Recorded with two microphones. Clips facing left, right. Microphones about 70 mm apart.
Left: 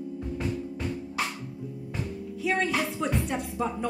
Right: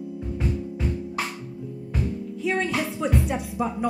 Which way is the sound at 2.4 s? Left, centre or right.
Centre.